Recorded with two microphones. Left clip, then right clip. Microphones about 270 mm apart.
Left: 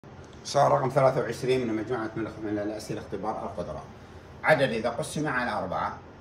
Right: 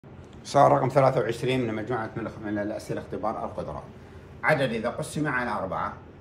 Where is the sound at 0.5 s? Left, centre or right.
Right.